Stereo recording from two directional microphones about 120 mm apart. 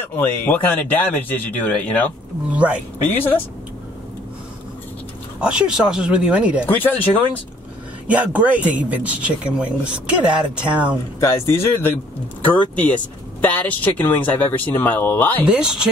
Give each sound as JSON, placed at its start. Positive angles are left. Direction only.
{"t": 0.0, "sound": "speech", "side_deg": 15}
{"t": 2.5, "sound": "speech", "side_deg": -10}
{"t": 5.4, "sound": "speech", "side_deg": -5}
{"t": 6.6, "sound": "speech", "side_deg": 15}
{"t": 8.1, "sound": "speech", "side_deg": -10}
{"t": 11.1, "sound": "speech", "side_deg": 25}
{"t": 15.4, "sound": "speech", "side_deg": -10}